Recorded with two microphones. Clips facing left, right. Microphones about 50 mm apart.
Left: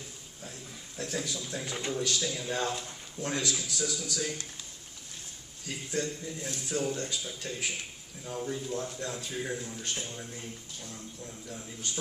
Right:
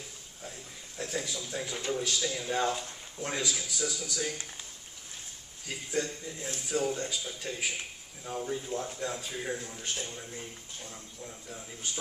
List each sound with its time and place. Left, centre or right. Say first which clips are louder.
0.9 s speech: even; centre
5.7 s speech: even; centre
10.3 s speech: even; centre